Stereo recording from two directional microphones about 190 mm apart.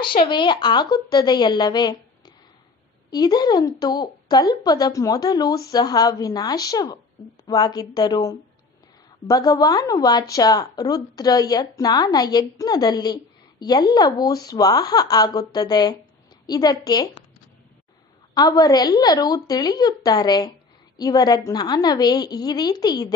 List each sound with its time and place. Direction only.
0.2 s a woman's voice: 25° left (ahead or behind)
18.3 s speech: 20° left (ahead or behind)